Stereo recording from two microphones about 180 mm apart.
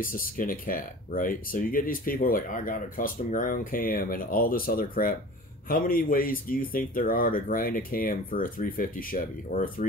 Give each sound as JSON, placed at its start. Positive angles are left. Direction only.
{"t": 0.0, "sound": "speech", "side_deg": 50}